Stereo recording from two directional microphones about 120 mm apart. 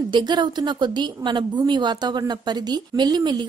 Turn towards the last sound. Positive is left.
turn(degrees=-35)  # may be behind; listen again after turning